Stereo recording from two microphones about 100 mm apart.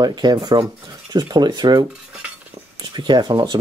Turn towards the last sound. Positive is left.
turn(degrees=-45)  # may be behind; listen again after turning